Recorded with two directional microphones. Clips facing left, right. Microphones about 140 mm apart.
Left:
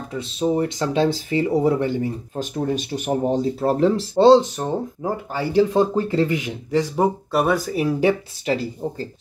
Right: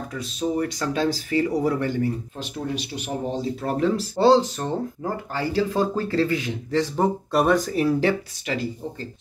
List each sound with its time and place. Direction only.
0.1 s speech: 25° left (ahead or behind)
2.3 s speech: 45° left (ahead or behind)
3.6 s speech: 30° left (ahead or behind); by 8.2 s 15° left (ahead or behind)
8.5 s speech: 35° left (ahead or behind)